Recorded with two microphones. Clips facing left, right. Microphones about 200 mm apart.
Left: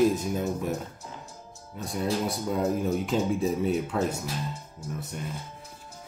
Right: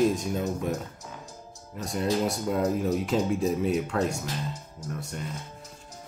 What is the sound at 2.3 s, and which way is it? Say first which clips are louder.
Speech: right 1 dB; centre (ahead or behind).